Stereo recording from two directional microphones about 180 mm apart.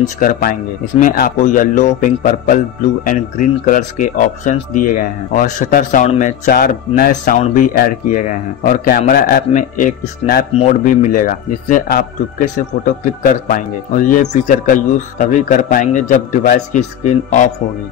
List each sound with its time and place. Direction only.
0.2 s speech: 50° left (ahead or behind)